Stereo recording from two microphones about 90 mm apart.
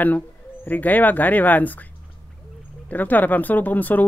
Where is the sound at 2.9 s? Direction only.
20° left (ahead or behind).